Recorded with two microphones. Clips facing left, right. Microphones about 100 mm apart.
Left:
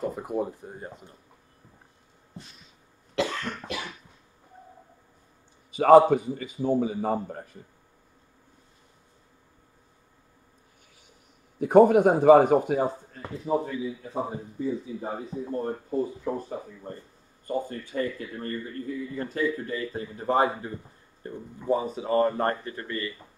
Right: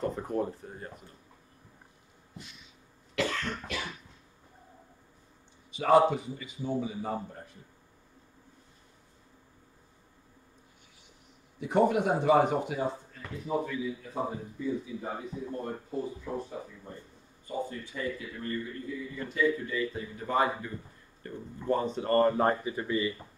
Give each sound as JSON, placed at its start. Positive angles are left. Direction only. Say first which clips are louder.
{"t": 0.0, "sound": "a man's voice", "louder": "left 2 dB", "side_deg": 10}
{"t": 2.3, "sound": "a sound", "louder": "left 2 dB", "side_deg": 35}
{"t": 5.8, "sound": "speech", "louder": "left 7 dB", "side_deg": 50}
{"t": 11.6, "sound": "a man's voice", "louder": "left 9 dB", "side_deg": 50}
{"t": 17.5, "sound": "a man's voice", "louder": "left 5 dB", "side_deg": 55}